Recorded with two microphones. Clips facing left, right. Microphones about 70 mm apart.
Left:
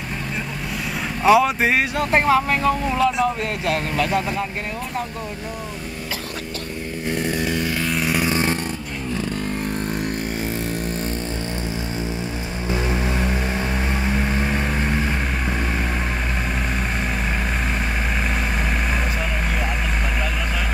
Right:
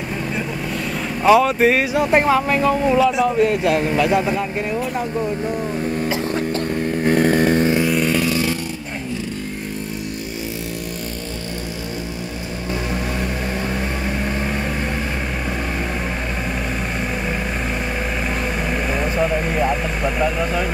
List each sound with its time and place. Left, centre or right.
1.2 s speech: centre
7.1 s chainsaw: right
7.8 s chainsaw: centre
8.3 s a sound: left
14.0 s vehicle: centre